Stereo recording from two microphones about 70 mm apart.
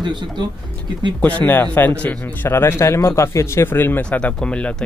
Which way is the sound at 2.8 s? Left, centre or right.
Left.